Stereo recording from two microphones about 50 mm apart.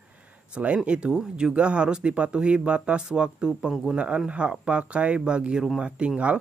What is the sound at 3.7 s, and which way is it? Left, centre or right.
Speech, centre.